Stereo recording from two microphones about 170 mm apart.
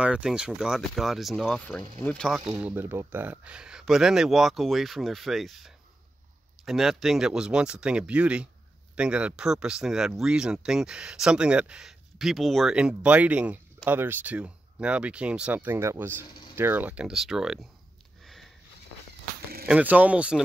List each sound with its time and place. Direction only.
0.0 s speech: 5° right (ahead or behind)
1.8 s speech: 15° left (ahead or behind)
2.1 s speech: centre (ahead or behind)
18.2 s sniff: centre (ahead or behind)
19.7 s speech: 10° right (ahead or behind)